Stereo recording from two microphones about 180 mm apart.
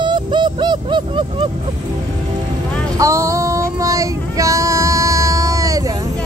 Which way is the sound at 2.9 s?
15° right (ahead or behind).